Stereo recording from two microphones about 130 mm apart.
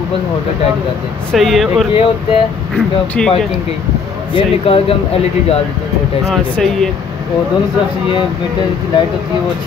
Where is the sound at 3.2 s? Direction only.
5° left (ahead or behind).